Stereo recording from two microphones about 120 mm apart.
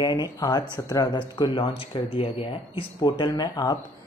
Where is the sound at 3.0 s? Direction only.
35° left (ahead or behind).